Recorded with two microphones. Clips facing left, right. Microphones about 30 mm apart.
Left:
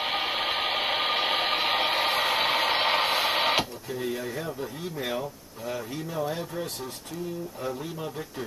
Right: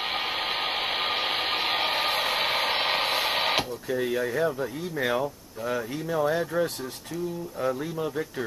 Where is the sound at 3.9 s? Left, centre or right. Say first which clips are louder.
Right 5 dB; centre.